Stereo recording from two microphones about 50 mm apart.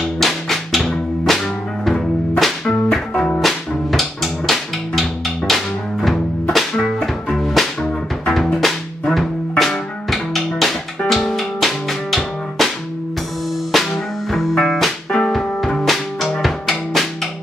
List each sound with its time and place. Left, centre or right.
0.0 s music: centre
2.9 s music: centre
3.3 s music: centre
9.1 s music: centre
13.7 s music: centre